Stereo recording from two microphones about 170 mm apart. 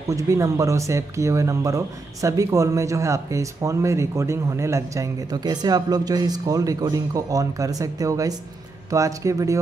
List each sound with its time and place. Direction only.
0.1 s speech: 20° right (ahead or behind)